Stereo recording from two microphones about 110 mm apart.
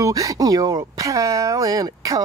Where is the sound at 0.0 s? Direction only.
35° right (ahead or behind).